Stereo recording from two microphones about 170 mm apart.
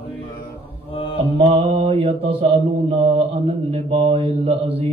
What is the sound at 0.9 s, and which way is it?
Mantra, 30° left (ahead or behind).